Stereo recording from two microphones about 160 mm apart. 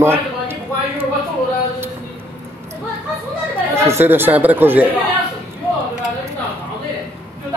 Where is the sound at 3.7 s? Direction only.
15° right (ahead or behind).